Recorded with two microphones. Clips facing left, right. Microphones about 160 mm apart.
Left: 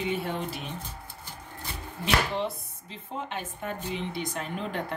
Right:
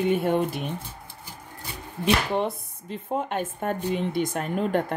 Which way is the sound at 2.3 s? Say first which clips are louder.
Right 5 dB; 50° right (ahead or behind).